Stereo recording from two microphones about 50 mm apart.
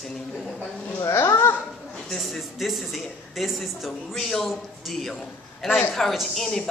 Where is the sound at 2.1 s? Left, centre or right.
Centre.